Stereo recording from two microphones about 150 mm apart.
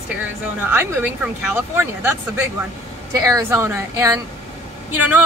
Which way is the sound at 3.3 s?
20° right (ahead or behind).